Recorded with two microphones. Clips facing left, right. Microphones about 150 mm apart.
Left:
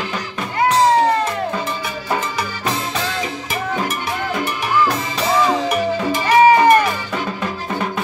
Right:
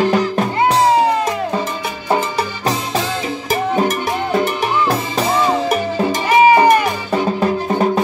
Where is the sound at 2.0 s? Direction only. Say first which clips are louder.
Right 5 dB; 30° right (ahead or behind).